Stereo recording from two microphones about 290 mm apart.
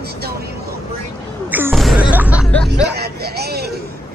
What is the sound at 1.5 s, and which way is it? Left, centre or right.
Music, centre.